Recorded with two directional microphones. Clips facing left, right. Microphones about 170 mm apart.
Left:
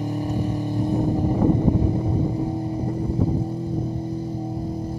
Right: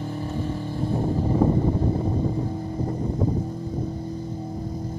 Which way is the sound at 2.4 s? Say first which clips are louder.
Left 4 dB; 15° left (ahead or behind).